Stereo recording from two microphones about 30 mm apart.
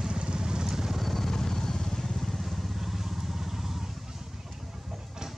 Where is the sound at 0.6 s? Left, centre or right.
Centre.